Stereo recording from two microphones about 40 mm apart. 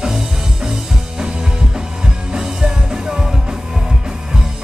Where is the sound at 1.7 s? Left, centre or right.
Centre.